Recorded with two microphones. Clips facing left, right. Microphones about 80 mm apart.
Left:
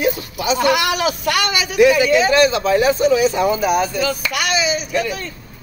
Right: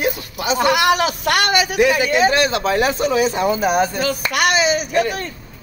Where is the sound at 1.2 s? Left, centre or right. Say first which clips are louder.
Right 2 dB; right.